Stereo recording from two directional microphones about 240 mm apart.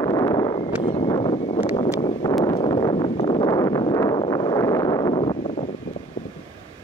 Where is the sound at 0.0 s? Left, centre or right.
Centre.